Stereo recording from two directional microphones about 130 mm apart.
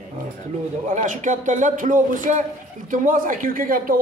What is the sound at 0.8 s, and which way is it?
A man's voice, 75° right (ahead or behind).